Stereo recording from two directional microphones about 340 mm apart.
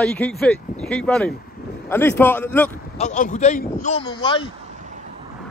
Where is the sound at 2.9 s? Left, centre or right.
Left.